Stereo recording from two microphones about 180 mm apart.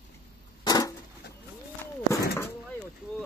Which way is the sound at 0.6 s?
20° left (ahead or behind).